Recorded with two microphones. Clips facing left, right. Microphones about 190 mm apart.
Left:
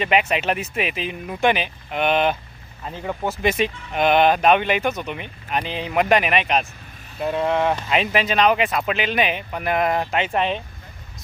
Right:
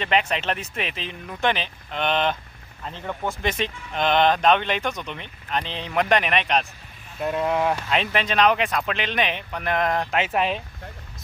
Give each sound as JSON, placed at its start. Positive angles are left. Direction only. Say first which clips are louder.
{"t": 0.0, "sound": "speech", "louder": "left 3 dB", "side_deg": 10}